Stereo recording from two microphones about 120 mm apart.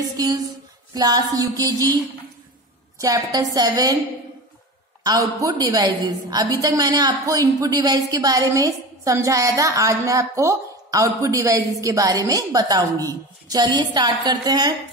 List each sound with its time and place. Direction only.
0.2 s music: 35° right (ahead or behind)
3.0 s a woman's voice: 30° right (ahead or behind)
3.5 s music: 30° right (ahead or behind)
5.0 s a woman's voice: 30° right (ahead or behind)